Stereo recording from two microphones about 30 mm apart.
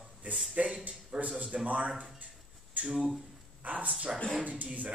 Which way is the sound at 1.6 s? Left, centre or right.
Right.